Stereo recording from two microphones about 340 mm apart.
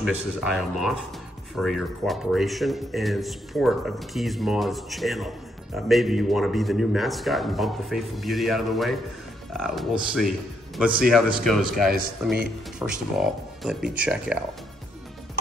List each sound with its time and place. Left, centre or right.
0.0 s speech: centre